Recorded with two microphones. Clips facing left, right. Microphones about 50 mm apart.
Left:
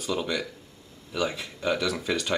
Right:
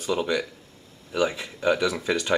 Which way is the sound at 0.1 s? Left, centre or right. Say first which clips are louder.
Right 4 dB; centre.